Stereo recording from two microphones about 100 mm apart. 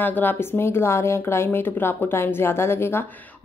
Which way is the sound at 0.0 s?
20° left (ahead or behind).